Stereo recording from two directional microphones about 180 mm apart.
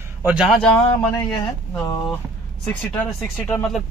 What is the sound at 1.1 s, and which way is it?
Speech, 20° left (ahead or behind).